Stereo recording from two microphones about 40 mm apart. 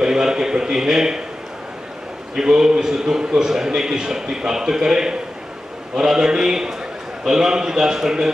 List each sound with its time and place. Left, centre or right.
0.0 s a man's voice: centre
2.3 s a man's voice: centre